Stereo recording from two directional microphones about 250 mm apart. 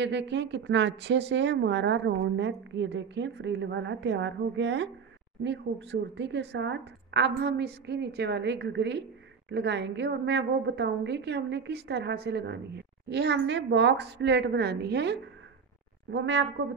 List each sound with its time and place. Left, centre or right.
0.0 s a woman's voice: right